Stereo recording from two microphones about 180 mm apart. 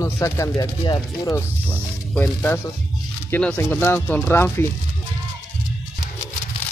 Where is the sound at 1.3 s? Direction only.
10° left (ahead or behind).